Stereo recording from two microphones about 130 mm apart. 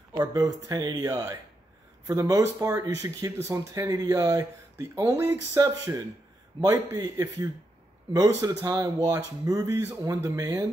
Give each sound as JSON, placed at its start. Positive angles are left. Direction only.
{"t": 0.1, "sound": "speech", "side_deg": -30}